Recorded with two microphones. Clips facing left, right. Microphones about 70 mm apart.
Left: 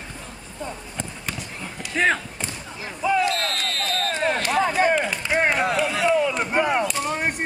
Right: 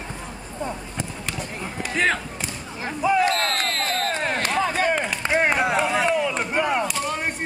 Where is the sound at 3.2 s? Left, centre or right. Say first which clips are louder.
Right 2 dB; right.